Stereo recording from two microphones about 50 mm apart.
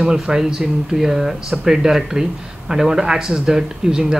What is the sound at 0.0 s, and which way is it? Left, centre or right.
Speech, centre.